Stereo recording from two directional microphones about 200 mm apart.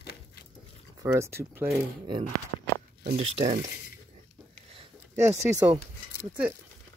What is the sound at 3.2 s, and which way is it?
Speech, 30° right (ahead or behind).